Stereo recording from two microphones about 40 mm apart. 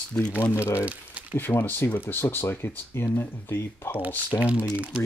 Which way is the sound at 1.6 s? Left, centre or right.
Left.